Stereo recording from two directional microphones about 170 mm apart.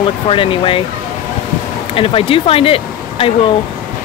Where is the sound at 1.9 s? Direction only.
35° left (ahead or behind).